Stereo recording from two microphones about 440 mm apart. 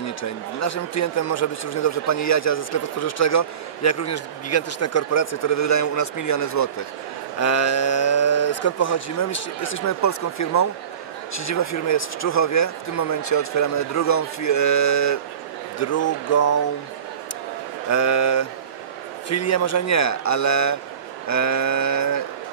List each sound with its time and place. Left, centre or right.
0.2 s speech: left
17.8 s speech: left